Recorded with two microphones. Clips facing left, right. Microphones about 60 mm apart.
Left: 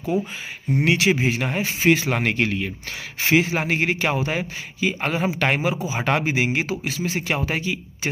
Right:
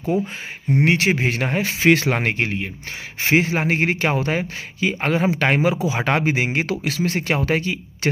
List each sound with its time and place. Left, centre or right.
0.8 s speech: right
1.6 s speech: right
2.0 s speech: right